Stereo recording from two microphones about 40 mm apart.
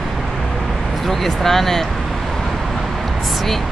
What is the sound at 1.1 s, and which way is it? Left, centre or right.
Speech, centre.